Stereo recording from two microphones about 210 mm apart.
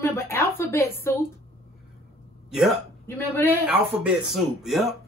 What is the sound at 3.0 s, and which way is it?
Speech, 10° left (ahead or behind).